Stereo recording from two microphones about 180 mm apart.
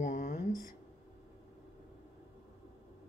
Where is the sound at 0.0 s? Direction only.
45° left (ahead or behind).